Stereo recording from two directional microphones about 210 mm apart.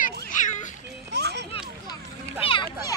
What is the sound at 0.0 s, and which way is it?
Children playing, 35° left (ahead or behind).